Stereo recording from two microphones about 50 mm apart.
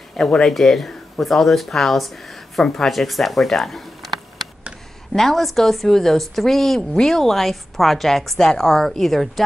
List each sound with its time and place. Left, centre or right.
0.3 s speech: centre